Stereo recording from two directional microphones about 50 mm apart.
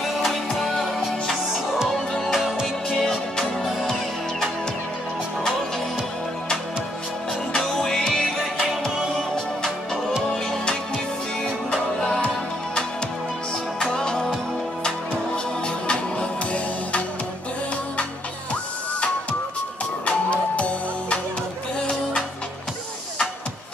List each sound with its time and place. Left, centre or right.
0.0 s music: centre
2.3 s music: centre
2.6 s music: centre
7.5 s music: centre
10.3 s music: centre
13.7 s music: centre
20.1 s music: left